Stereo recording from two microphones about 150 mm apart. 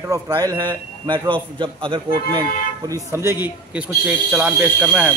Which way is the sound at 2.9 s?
20° right (ahead or behind).